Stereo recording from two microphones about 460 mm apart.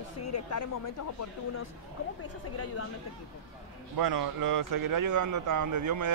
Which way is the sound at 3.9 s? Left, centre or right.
Right.